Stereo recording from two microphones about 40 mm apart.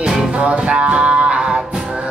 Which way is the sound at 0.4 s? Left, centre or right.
Right.